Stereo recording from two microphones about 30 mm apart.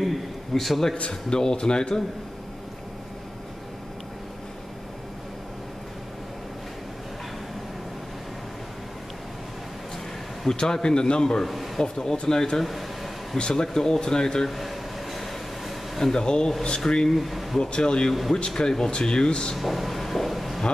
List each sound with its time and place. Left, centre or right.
0.0 s a sound: centre
1.3 s speech: left
10.5 s speech: left
11.4 s speech: centre
11.8 s speech: centre
12.6 s air conditioning: centre
13.4 s speech: left
14.5 s air conditioning: centre
16.0 s speech: centre
17.1 s speech: centre
17.6 s speech: left
19.5 s a sound: centre